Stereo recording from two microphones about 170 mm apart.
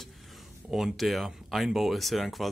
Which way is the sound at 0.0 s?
Centre (ahead or behind).